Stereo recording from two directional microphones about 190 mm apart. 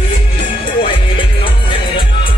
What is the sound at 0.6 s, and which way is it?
Music, 25° left (ahead or behind).